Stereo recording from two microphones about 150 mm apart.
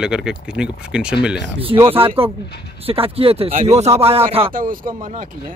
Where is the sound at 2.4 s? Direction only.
90° left.